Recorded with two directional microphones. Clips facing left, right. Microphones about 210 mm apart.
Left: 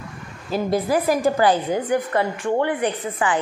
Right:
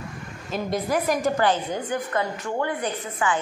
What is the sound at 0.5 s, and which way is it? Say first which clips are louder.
A woman's voice: left 5 dB; 35° left (ahead or behind).